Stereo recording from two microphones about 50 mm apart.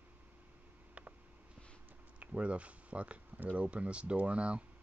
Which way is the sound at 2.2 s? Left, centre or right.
Right.